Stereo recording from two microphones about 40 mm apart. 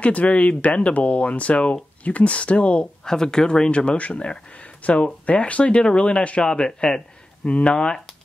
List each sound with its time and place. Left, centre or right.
0.0 s speech: left
3.1 s speech: centre
7.4 s speech: left
7.7 s speech: centre